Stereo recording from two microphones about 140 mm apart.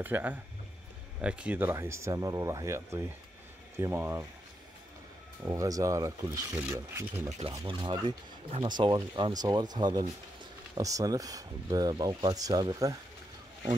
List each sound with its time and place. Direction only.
0.0 s speech: 15° right (ahead or behind)
5.4 s speech: 25° right (ahead or behind)
7.6 s speech: 35° right (ahead or behind)